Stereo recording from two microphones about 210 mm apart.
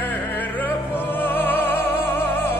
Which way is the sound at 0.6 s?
10° left (ahead or behind).